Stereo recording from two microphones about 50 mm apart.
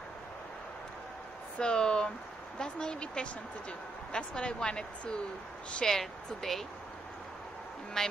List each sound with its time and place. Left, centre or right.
1.6 s a woman's voice: centre
5.9 s speech: centre
8.0 s speech: centre